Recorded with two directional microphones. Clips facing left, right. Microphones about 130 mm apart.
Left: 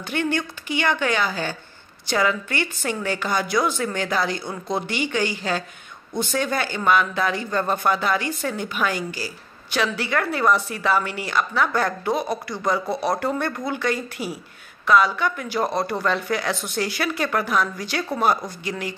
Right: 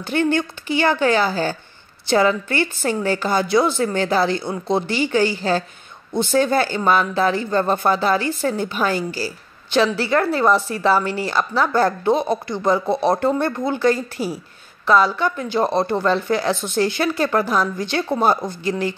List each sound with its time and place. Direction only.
0.0 s a woman's voice: 30° right (ahead or behind)